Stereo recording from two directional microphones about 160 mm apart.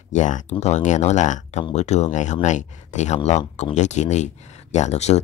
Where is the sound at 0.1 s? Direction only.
50° left (ahead or behind).